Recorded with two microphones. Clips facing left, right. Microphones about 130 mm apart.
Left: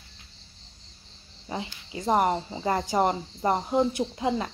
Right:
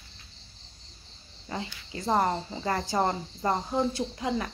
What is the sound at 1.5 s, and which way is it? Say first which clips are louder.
Speech: left 2 dB; 20° left (ahead or behind).